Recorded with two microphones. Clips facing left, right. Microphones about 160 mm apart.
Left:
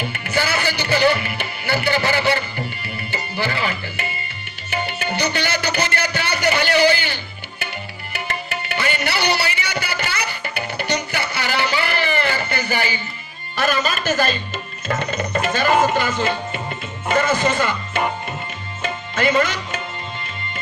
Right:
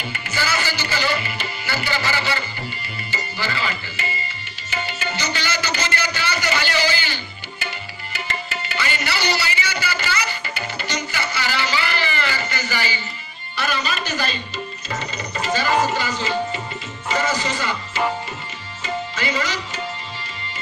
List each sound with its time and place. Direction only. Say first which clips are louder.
0.0 s music: left 4 dB; 55° left (ahead or behind)
3.1 s tabla: left 3 dB; 60° left (ahead or behind)
4.6 s music: left 3 dB; 60° left (ahead or behind)
13.6 s speech: left 4 dB; 50° left (ahead or behind)
14.9 s music: left 10 dB; 55° left (ahead or behind)
17.1 s speech: left 4 dB; 55° left (ahead or behind)
18.8 s music: left 3 dB; 55° left (ahead or behind)